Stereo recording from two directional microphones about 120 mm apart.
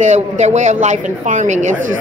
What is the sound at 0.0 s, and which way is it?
Speech, 75° right (ahead or behind).